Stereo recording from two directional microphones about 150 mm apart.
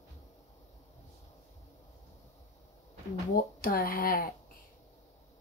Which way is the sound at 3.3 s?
75° left (ahead or behind).